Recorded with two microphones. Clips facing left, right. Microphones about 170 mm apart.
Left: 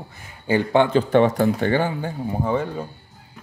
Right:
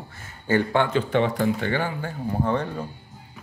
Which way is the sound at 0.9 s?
40° left (ahead or behind).